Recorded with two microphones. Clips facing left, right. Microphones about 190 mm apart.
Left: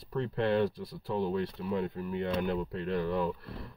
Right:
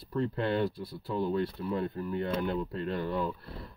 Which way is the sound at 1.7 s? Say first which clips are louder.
Left 1 dB; 40° right (ahead or behind).